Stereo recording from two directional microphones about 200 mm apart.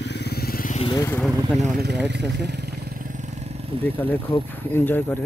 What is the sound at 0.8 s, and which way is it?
Speech, 20° left (ahead or behind).